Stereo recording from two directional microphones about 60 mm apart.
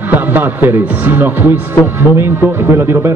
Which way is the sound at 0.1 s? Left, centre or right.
Right.